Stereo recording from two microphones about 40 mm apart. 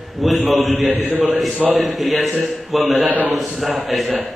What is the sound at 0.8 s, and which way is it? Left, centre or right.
Speech, right.